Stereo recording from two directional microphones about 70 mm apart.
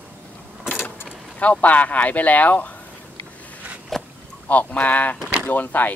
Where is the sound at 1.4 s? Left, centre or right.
Left.